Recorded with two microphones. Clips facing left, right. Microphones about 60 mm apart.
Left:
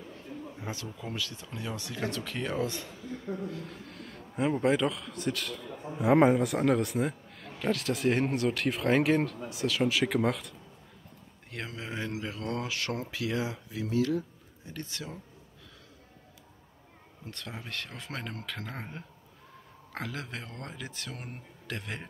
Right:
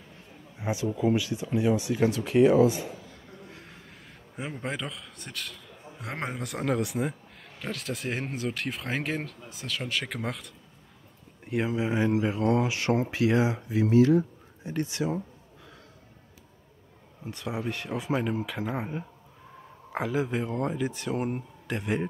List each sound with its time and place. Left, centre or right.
0.6 s a sound: centre
0.8 s a man's voice: centre
11.4 s speech: centre
14.8 s speech: right
17.2 s a man's voice: centre